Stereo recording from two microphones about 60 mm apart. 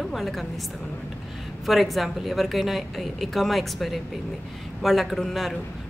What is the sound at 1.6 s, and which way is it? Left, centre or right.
A woman's voice, centre.